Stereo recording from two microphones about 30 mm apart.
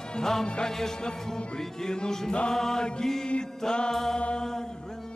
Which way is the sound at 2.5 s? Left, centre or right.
Centre.